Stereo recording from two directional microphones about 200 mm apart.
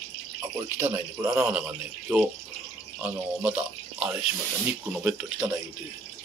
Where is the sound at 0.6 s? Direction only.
10° right (ahead or behind).